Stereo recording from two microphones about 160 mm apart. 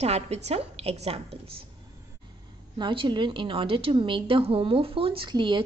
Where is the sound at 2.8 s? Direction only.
30° right (ahead or behind).